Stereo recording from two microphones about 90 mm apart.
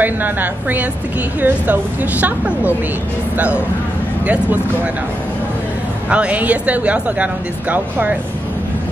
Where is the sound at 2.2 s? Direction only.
20° right (ahead or behind).